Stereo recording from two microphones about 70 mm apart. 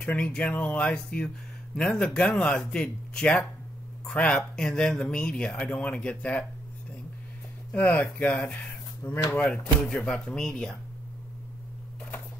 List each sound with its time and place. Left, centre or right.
0.0 s speech: centre
7.7 s speech: left
8.5 s a sound: left
9.9 s speech: centre